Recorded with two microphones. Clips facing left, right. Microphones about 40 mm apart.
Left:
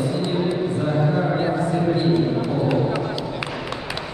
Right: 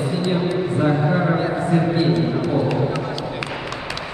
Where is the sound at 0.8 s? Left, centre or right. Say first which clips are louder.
Right 4 dB; right.